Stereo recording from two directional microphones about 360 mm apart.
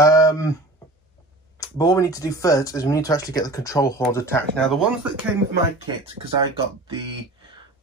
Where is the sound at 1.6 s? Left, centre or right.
Centre.